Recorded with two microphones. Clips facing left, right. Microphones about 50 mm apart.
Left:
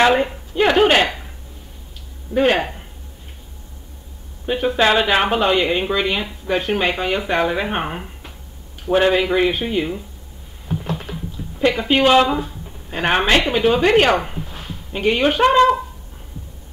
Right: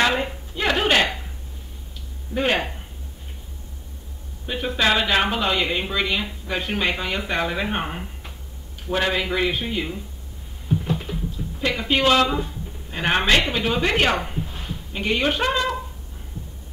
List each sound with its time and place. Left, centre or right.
0.0 s speech: left
2.3 s speech: centre
4.5 s speech: left
11.6 s speech: left